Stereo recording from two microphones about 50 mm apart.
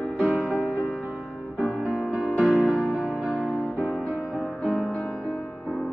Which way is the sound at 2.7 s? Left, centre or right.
Centre.